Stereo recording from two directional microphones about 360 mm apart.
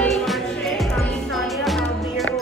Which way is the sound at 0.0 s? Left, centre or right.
Centre.